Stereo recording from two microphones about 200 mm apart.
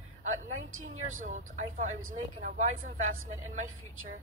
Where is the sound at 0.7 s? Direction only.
90° right.